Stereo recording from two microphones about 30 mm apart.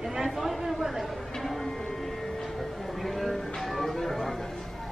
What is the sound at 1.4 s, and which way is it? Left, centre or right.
Music, centre.